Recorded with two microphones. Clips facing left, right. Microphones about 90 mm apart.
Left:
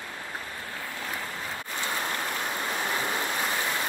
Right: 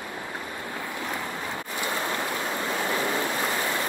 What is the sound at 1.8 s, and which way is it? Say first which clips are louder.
Waves: right 2 dB; 20° right (ahead or behind).